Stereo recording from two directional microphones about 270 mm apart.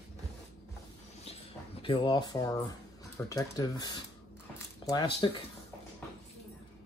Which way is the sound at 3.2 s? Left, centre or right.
Centre.